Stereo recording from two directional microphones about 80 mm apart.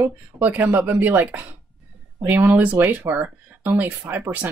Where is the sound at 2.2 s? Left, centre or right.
Right.